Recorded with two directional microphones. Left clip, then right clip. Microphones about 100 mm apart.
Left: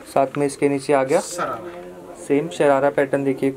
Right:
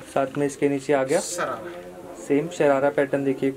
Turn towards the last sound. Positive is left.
turn(degrees=15)  # may be behind; listen again after turning